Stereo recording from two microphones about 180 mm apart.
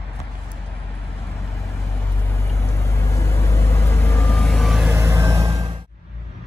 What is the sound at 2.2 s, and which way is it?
Vehicle, 15° left (ahead or behind).